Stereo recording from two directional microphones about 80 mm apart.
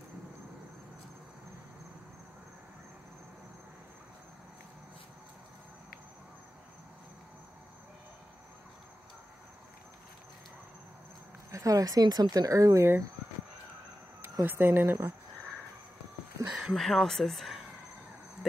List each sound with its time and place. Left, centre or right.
11.5 s speech: right
14.4 s speech: right
16.4 s a sound: centre
16.7 s speech: centre